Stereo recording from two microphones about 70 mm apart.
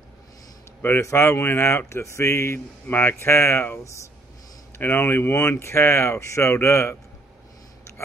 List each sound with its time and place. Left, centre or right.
1.0 s speech: left